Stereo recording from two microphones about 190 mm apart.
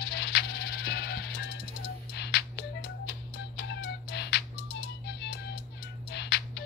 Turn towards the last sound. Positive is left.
turn(degrees=65)  # may be behind; listen again after turning